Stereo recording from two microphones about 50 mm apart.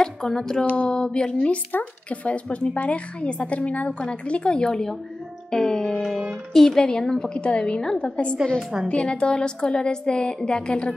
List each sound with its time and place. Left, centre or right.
0.0 s speech: centre
0.7 s a woman's voice: left
0.9 s a woman's voice: centre
5.5 s music: centre
6.5 s a woman's voice: centre